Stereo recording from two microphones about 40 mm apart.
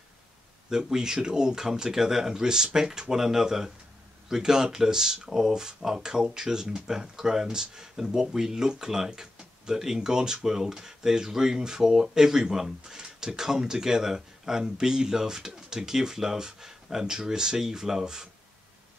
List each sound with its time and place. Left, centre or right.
0.7 s speech: centre